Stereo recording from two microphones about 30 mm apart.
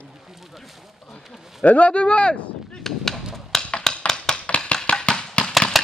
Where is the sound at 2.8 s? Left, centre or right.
Centre.